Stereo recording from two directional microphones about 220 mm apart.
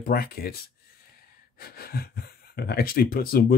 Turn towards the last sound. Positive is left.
turn(degrees=40)  # may be behind; listen again after turning